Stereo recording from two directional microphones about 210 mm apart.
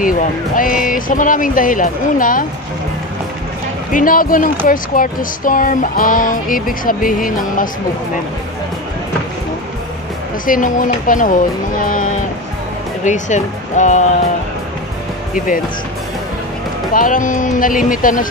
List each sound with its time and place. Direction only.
0.0 s speech: 40° left (ahead or behind)
3.9 s speech: 40° left (ahead or behind)
10.4 s speech: 40° left (ahead or behind)
15.3 s speech: 40° left (ahead or behind)
16.9 s speech: 40° left (ahead or behind)